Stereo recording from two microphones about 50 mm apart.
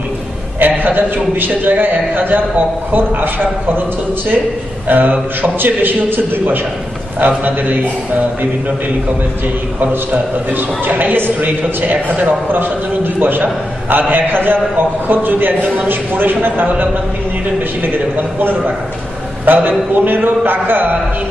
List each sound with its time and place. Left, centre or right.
0.6 s a man's voice: right
4.8 s a man's voice: right
9.8 s a man's voice: right